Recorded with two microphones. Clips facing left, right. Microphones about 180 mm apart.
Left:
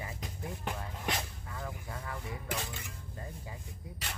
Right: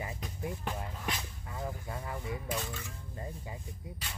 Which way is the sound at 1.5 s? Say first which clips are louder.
Right 5 dB; 20° right (ahead or behind).